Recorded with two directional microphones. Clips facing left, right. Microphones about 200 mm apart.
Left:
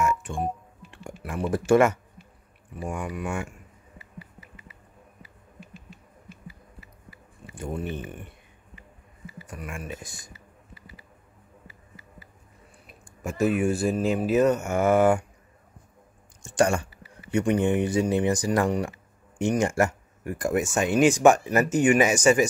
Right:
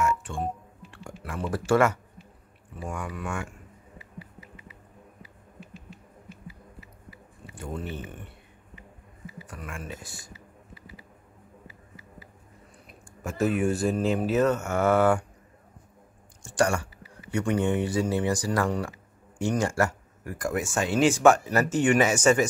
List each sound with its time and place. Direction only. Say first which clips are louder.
0.0 s telephone dialing: left 1 dB; 15° left (ahead or behind)
0.9 s speech: left 3 dB; 20° left (ahead or behind)
7.5 s speech: left 3 dB; 15° left (ahead or behind)
9.5 s speech: left 3 dB; 15° left (ahead or behind)
13.0 s speech: left 2 dB; 10° left (ahead or behind)
16.4 s speech: left 2 dB; 20° left (ahead or behind)